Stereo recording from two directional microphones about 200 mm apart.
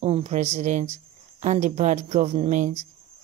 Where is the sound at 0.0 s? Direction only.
35° right (ahead or behind).